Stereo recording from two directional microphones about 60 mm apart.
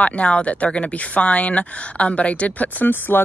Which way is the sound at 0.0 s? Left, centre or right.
Left.